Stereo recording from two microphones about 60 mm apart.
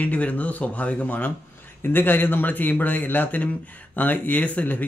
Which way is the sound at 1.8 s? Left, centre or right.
Left.